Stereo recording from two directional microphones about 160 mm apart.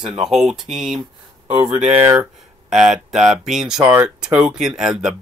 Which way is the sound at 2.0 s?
10° right (ahead or behind).